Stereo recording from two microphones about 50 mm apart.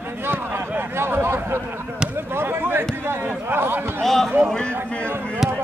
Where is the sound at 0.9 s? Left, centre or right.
Right.